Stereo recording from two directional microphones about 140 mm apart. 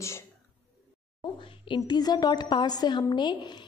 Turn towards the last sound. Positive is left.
turn(degrees=35)  # may be behind; listen again after turning